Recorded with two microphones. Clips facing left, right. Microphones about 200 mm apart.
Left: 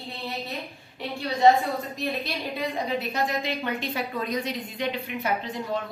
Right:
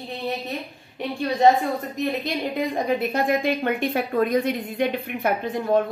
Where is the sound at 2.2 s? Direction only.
50° right (ahead or behind).